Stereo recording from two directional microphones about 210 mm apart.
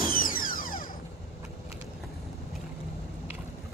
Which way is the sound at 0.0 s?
40° left (ahead or behind).